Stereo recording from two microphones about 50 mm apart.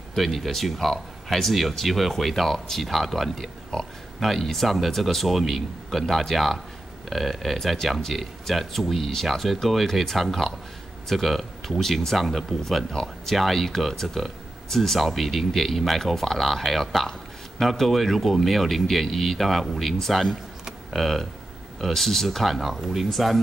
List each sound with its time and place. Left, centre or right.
0.1 s speech: centre
20.6 s a sound: centre
21.8 s speech: centre